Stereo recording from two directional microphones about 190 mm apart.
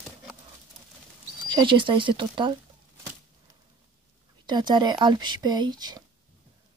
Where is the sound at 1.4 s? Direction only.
25° right (ahead or behind).